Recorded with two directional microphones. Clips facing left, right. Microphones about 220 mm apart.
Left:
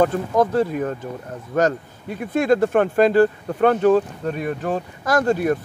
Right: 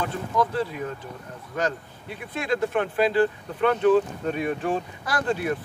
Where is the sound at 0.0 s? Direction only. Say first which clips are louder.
Left 8 dB; 45° left (ahead or behind).